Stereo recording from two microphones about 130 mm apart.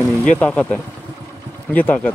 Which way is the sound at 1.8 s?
10° left (ahead or behind).